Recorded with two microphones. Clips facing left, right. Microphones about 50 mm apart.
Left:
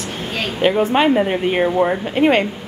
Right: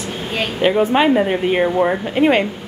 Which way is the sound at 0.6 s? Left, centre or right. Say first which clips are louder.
Even; centre.